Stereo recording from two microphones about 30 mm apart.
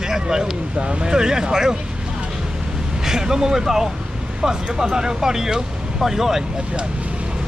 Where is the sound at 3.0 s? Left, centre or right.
Centre.